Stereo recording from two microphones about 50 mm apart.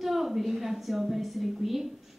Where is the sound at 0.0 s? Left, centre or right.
Centre.